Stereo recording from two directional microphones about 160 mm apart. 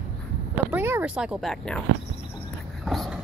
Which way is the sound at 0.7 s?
10° right (ahead or behind).